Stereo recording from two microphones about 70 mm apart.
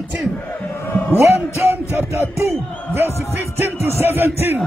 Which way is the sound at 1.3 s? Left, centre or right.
Right.